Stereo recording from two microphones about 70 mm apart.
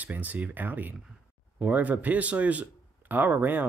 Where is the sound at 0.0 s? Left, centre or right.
Right.